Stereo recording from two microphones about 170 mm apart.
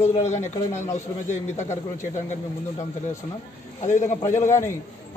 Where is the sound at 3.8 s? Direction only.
45° left (ahead or behind).